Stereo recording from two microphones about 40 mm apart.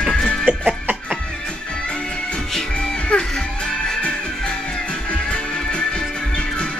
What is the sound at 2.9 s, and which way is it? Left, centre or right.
Music, left.